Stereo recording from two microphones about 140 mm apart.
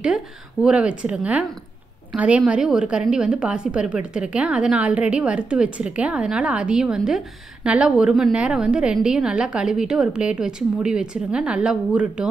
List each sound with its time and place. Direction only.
0.0 s a woman's voice: 5° right (ahead or behind)